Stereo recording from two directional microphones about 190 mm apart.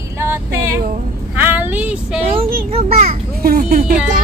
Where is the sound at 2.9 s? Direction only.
35° right (ahead or behind).